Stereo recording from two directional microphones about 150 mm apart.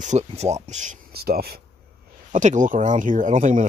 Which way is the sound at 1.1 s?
90° right.